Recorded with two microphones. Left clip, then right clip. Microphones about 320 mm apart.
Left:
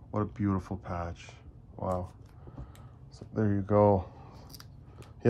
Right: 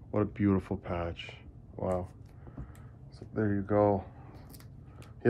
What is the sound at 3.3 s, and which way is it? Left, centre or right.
Speech, left.